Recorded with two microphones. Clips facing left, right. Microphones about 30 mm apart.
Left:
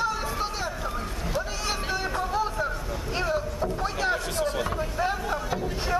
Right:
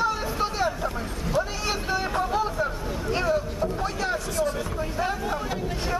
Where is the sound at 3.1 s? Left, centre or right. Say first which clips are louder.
Right 2 dB; centre.